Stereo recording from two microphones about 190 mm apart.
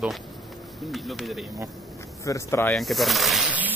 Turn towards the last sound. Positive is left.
turn(degrees=-10)  # may be behind; listen again after turning